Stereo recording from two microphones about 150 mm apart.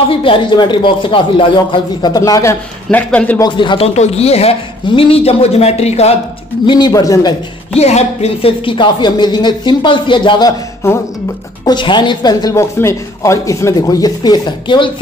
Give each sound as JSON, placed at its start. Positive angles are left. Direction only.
{"t": 0.1, "sound": "a woman's voice", "side_deg": 35}
{"t": 2.9, "sound": "a man's voice", "side_deg": 10}
{"t": 3.3, "sound": "speech", "side_deg": 30}
{"t": 6.6, "sound": "a woman's voice", "side_deg": 30}
{"t": 7.7, "sound": "speech", "side_deg": 45}
{"t": 11.6, "sound": "a woman's voice", "side_deg": 30}